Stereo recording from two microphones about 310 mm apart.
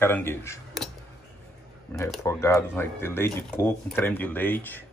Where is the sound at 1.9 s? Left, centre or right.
Centre.